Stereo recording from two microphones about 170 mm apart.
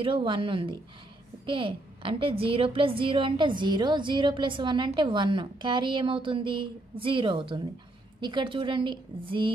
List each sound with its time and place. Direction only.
0.0 s a woman's voice: 30° right (ahead or behind)